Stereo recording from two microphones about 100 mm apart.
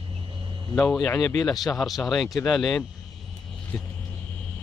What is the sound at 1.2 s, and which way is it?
Speech, 30° left (ahead or behind).